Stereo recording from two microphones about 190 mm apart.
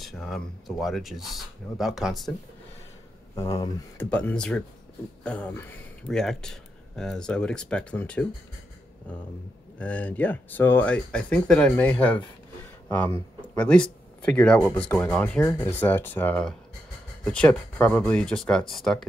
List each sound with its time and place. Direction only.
0.0 s speech: centre (ahead or behind)
3.5 s speech: 20° left (ahead or behind)
4.1 s speech: 5° left (ahead or behind)
9.8 s speech: 5° left (ahead or behind)